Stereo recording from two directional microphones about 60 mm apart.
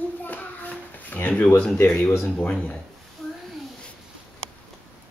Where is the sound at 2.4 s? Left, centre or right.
Left.